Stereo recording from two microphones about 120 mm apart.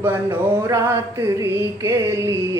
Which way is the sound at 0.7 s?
25° right (ahead or behind).